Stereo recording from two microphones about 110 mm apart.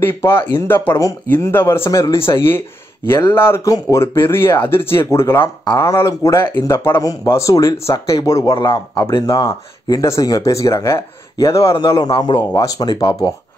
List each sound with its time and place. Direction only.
0.0 s speech: 20° left (ahead or behind)
7.0 s a man's voice: 30° left (ahead or behind)
9.2 s speech: 30° left (ahead or behind)